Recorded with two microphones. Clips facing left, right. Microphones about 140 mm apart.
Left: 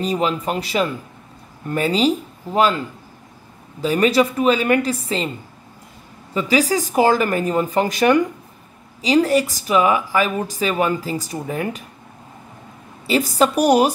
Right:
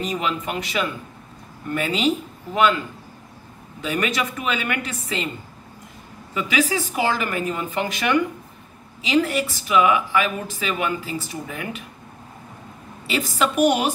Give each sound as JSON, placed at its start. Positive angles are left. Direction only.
{"t": 0.0, "sound": "speech", "side_deg": 35}
{"t": 3.8, "sound": "speech", "side_deg": 35}
{"t": 6.3, "sound": "speech", "side_deg": 35}
{"t": 13.0, "sound": "speech", "side_deg": 40}